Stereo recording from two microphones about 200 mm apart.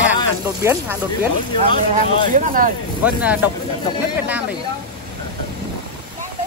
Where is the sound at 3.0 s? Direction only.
5° right (ahead or behind).